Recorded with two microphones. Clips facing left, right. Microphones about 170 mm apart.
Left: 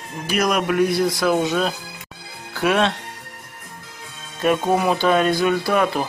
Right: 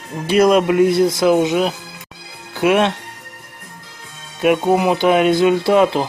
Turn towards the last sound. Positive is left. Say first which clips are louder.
# right 6 dB
turn(degrees=-25)  # may be behind; listen again after turning